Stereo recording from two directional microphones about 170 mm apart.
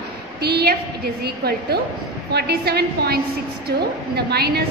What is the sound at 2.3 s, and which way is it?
A woman's voice, 70° right (ahead or behind).